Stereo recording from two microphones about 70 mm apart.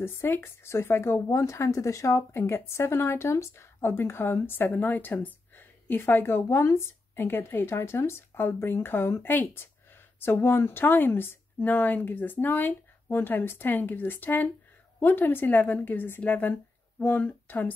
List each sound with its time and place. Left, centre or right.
0.0 s speech: left
2.3 s a woman's voice: left